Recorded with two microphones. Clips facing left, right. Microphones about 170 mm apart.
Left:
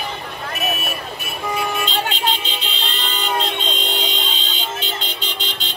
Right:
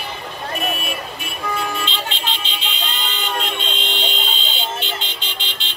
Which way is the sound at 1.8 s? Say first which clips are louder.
Left 5 dB; 40° left (ahead or behind).